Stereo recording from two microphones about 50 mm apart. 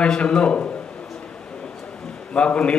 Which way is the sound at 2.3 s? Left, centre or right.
Left.